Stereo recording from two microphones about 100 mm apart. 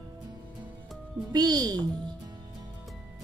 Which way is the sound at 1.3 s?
40° right (ahead or behind).